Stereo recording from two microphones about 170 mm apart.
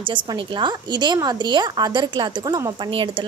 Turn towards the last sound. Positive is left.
turn(degrees=-30)  # may be behind; listen again after turning